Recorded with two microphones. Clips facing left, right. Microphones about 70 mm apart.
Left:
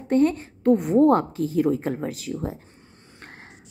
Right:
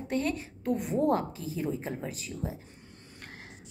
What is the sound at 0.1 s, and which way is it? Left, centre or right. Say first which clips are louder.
A woman's voice: left 11 dB; left.